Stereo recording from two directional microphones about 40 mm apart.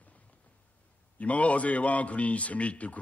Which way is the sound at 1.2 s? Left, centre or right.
Left.